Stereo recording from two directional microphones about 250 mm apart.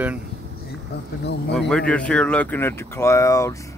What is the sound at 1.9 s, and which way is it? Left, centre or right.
Speech, centre.